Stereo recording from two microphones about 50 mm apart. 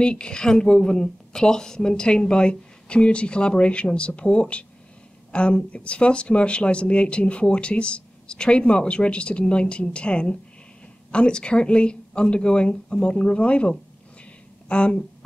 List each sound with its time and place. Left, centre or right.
0.0 s speech: centre